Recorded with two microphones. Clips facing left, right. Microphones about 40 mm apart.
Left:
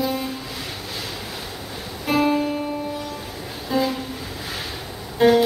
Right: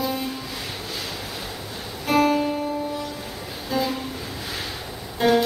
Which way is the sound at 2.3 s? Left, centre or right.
Centre.